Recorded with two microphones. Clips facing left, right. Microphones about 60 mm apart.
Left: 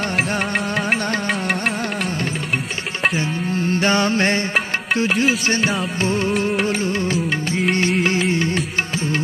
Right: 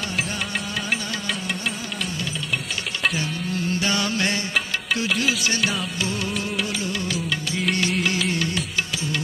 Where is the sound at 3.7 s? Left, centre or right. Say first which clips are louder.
Left 7 dB; left.